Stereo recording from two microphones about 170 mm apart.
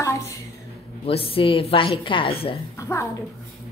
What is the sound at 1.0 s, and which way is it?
A woman's voice, 35° left (ahead or behind).